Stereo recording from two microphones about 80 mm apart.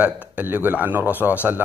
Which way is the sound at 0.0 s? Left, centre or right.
Right.